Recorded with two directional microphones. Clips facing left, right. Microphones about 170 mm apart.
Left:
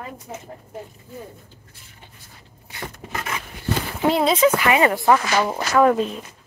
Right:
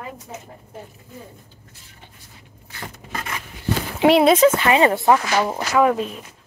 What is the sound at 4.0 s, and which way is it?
Speech, 75° right (ahead or behind).